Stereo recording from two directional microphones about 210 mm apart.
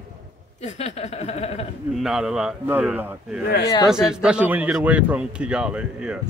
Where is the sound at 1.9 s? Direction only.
Centre (ahead or behind).